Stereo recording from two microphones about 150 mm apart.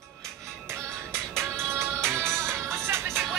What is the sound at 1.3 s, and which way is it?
Music, 15° right (ahead or behind).